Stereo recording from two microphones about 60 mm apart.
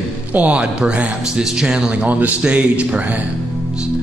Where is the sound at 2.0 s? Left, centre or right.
Right.